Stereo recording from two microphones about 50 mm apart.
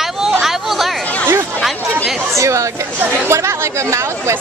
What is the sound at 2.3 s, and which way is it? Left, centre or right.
Speech, right.